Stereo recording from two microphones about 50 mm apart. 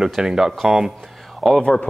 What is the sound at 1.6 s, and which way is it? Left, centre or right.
Speech, centre.